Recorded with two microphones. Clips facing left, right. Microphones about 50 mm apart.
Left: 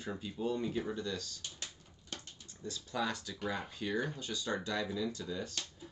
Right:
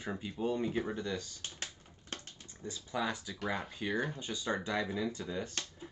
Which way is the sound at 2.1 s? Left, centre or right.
Right.